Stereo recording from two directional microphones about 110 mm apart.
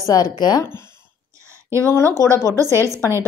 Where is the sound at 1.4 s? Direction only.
25° right (ahead or behind).